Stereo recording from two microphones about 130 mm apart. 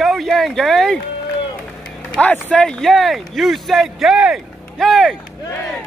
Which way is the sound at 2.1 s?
10° left (ahead or behind).